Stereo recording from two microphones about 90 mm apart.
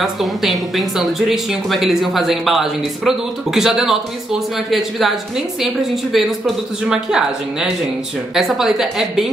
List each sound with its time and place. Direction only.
0.0 s a woman's voice: centre (ahead or behind)
6.1 s a woman's voice: 5° right (ahead or behind)